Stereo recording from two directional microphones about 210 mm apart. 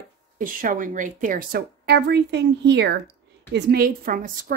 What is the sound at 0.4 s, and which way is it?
A woman's voice, 40° right (ahead or behind).